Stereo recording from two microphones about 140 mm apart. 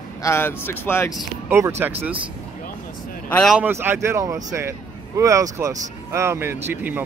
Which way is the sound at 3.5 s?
15° right (ahead or behind).